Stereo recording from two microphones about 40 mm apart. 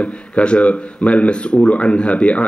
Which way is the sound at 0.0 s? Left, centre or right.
Left.